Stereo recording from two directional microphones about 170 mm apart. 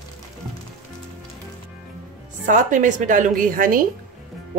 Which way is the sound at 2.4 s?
50° right (ahead or behind).